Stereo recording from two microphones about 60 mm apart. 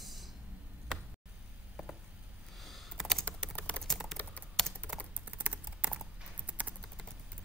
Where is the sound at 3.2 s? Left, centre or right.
Left.